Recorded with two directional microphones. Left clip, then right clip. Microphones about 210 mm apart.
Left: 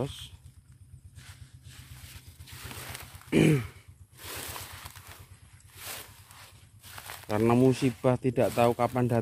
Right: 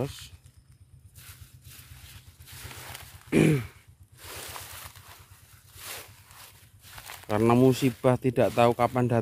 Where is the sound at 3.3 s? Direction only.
15° right (ahead or behind).